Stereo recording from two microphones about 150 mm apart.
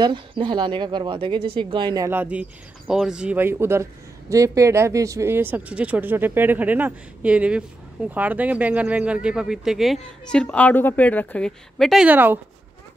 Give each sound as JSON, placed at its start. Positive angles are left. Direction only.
{"t": 0.0, "sound": "speech", "side_deg": -30}
{"t": 2.0, "sound": "a woman's voice", "side_deg": -10}